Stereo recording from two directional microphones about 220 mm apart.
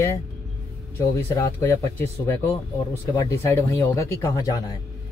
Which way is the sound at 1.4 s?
10° left (ahead or behind).